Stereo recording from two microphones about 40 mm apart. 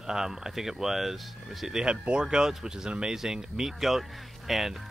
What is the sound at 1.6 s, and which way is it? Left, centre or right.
Speech, centre.